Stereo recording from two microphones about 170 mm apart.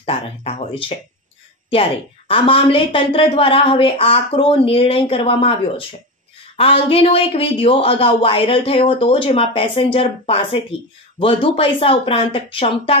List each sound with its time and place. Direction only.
0.0 s a woman's voice: 35° left (ahead or behind)